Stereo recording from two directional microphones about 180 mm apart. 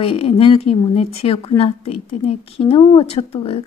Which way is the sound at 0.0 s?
30° left (ahead or behind).